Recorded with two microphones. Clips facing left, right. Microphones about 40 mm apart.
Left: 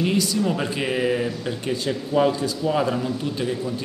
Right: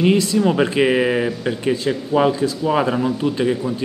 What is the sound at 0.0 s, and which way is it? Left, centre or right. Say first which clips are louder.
Speech: right 6 dB; right.